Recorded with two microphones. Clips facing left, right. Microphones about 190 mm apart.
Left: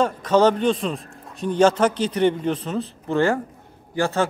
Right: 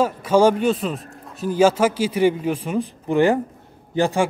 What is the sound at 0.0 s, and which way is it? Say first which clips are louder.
A man's voice: right 1 dB; 10° right (ahead or behind).